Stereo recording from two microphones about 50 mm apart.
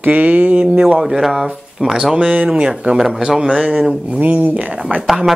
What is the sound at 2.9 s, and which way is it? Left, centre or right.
A woman's voice, centre.